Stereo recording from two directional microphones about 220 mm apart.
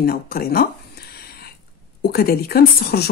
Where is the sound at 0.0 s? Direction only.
45° left (ahead or behind).